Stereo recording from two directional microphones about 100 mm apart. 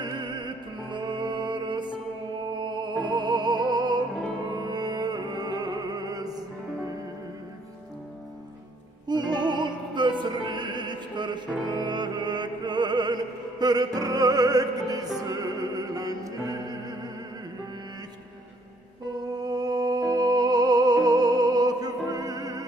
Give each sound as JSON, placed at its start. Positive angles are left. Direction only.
{"t": 0.0, "sound": "music", "side_deg": -50}
{"t": 9.0, "sound": "music", "side_deg": -45}
{"t": 15.2, "sound": "opera", "side_deg": -40}
{"t": 19.3, "sound": "music", "side_deg": -40}